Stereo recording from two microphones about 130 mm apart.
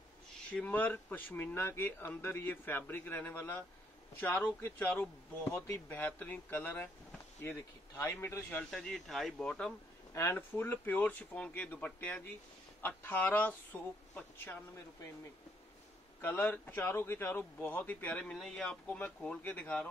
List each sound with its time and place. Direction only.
0.6 s speech: 15° left (ahead or behind)
8.7 s speech: 5° left (ahead or behind)
10.1 s speech: 20° left (ahead or behind)
16.2 s speech: 15° left (ahead or behind)